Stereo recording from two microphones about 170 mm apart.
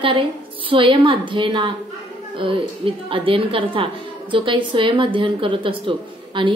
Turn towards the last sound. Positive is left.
turn(degrees=-30)  # may be behind; listen again after turning